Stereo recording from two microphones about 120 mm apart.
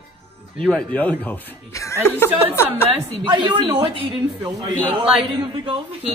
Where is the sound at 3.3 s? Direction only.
40° right (ahead or behind).